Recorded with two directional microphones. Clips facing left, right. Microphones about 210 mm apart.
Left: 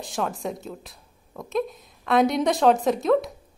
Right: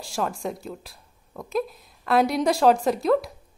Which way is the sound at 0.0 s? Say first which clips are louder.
Even; centre (ahead or behind).